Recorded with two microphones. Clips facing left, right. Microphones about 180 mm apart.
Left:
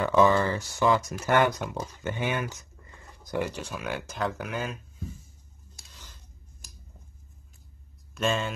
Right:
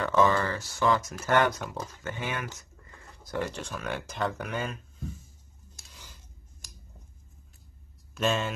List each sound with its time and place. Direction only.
0.0 s speech: 15° left (ahead or behind)
3.4 s speech: 10° left (ahead or behind)
8.1 s speech: centre (ahead or behind)